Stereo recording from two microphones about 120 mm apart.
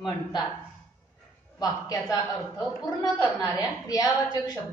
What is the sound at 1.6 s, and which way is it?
A woman's voice, 35° left (ahead or behind).